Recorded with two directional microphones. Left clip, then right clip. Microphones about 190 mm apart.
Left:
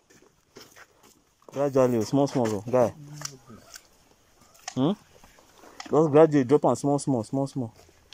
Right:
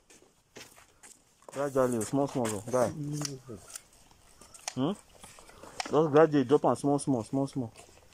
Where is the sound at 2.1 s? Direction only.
5° right (ahead or behind).